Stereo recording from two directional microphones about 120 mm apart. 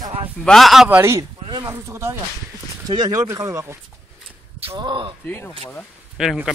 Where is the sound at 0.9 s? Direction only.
20° right (ahead or behind).